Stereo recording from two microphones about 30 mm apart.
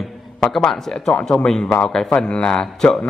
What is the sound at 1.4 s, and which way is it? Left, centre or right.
A man's voice, left.